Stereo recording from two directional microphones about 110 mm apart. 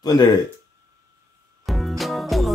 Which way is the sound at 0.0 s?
35° left (ahead or behind).